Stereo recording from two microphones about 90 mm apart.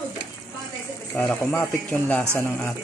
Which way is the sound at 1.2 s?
20° left (ahead or behind).